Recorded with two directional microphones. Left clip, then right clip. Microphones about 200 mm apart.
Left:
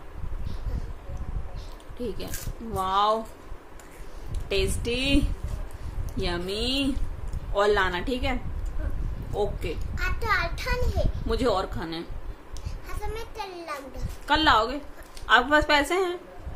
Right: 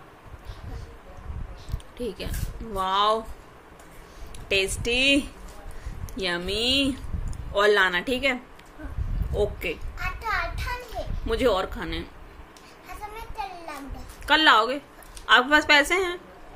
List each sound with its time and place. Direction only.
2.0 s a woman's voice: centre (ahead or behind)
4.5 s a woman's voice: centre (ahead or behind)
9.9 s children playing: 15° left (ahead or behind)
11.2 s a woman's voice: 5° left (ahead or behind)
14.2 s a woman's voice: centre (ahead or behind)